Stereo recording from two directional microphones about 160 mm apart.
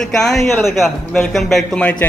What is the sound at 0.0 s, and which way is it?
A man's voice, centre (ahead or behind).